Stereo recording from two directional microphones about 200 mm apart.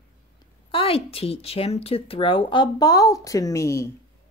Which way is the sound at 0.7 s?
25° left (ahead or behind).